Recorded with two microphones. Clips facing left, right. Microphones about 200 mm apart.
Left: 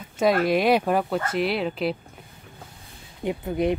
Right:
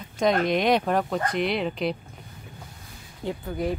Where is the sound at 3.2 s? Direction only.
20° left (ahead or behind).